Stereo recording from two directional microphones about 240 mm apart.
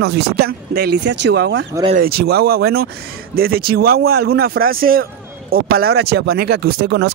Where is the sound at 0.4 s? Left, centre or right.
Right.